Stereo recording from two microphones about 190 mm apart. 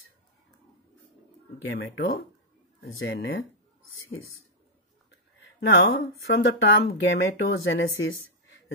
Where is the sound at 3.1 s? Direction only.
90° left.